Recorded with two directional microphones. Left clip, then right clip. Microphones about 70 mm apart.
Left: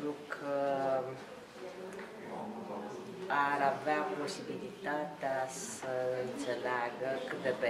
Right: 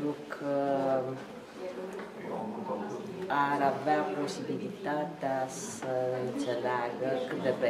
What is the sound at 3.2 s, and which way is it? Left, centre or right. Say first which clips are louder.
A woman's voice: right 3 dB; centre.